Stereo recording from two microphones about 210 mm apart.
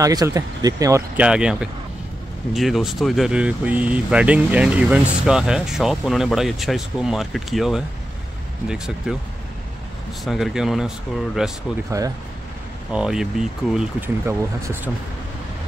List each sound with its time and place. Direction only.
0.0 s speech: 15° right (ahead or behind)
10.2 s speech: centre (ahead or behind)
11.9 s speech: 15° right (ahead or behind)
12.9 s speech: 5° right (ahead or behind)